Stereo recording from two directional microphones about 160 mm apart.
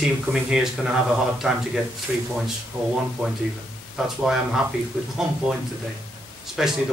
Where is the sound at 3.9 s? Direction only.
Centre (ahead or behind).